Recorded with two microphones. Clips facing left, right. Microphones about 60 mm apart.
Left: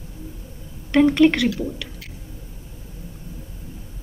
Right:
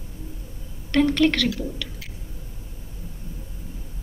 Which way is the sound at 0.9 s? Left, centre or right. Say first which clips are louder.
Left 4 dB; centre.